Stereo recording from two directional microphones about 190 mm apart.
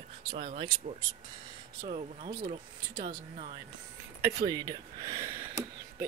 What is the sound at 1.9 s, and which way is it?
Speech, 45° right (ahead or behind).